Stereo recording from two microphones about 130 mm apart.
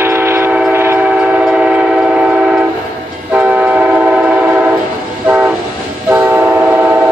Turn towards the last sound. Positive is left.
turn(degrees=-15)  # may be behind; listen again after turning